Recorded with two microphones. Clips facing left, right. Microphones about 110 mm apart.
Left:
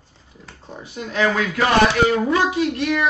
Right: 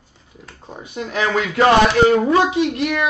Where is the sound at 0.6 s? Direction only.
20° right (ahead or behind).